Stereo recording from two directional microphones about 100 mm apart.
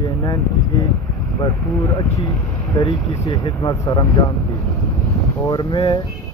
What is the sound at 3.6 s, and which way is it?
Speech, 45° left (ahead or behind).